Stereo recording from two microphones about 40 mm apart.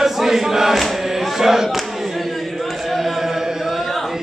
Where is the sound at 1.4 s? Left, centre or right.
Centre.